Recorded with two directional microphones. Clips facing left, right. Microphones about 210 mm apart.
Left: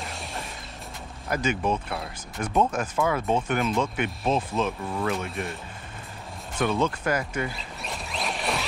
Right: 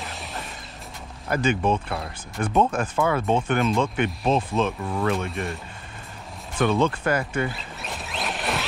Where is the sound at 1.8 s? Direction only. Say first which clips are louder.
Right 2 dB; centre (ahead or behind).